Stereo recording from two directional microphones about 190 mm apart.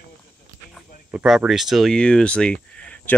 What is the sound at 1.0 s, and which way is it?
Speech, 5° right (ahead or behind).